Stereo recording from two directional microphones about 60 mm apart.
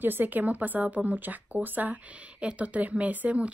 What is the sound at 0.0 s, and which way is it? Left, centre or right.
Speech, right.